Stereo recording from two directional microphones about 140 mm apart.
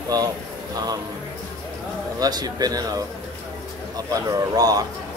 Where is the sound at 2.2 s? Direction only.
30° right (ahead or behind).